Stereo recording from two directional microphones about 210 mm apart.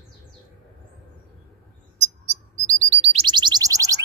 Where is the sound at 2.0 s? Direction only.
35° right (ahead or behind); by 3.9 s 15° right (ahead or behind).